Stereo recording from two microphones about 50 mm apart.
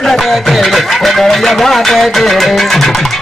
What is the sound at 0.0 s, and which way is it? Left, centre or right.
Music, centre.